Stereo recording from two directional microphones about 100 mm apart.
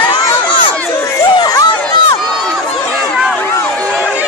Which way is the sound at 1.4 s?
40° left (ahead or behind).